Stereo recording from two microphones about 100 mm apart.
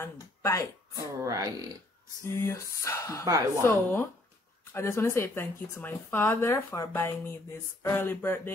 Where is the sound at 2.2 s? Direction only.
25° left (ahead or behind).